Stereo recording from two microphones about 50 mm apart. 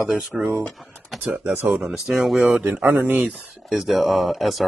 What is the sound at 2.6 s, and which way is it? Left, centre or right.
Speech, right.